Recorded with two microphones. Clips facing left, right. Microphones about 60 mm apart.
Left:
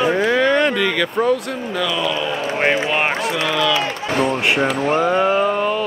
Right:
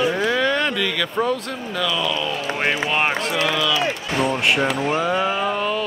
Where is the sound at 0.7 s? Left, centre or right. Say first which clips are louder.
Left 4 dB; centre.